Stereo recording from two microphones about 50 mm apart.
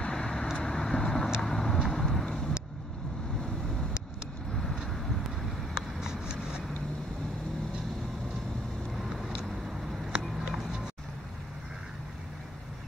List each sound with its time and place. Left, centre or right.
0.0 s vehicle: centre
5.8 s vehicle: centre
8.9 s vehicle: centre
9.4 s a sound: centre